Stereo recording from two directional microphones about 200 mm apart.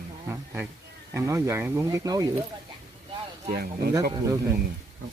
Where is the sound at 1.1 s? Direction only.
15° right (ahead or behind).